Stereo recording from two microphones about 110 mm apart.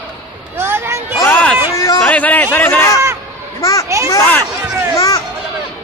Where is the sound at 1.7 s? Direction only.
30° left (ahead or behind).